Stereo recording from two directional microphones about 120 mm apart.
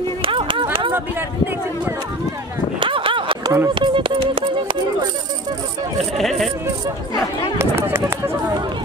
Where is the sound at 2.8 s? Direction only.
45° right (ahead or behind).